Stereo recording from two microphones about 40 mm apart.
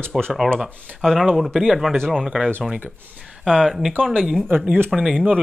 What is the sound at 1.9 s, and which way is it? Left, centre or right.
Speech, centre.